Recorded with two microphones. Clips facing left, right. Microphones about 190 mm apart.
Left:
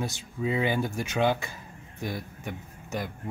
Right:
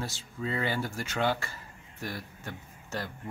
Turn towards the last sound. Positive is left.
turn(degrees=15)  # may be behind; listen again after turning